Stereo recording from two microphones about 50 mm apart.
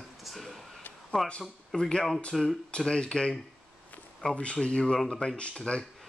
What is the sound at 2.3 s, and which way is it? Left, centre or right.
Speech, centre.